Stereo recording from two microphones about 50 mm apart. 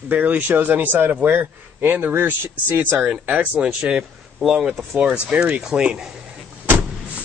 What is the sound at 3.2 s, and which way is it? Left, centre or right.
Speech, right.